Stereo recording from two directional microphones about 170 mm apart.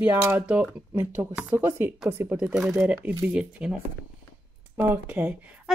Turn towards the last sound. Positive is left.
turn(degrees=-10)  # may be behind; listen again after turning